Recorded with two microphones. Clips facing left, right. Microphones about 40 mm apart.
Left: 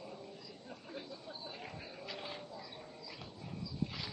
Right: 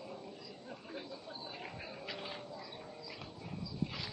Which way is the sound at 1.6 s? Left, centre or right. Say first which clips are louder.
Right 2 dB; centre.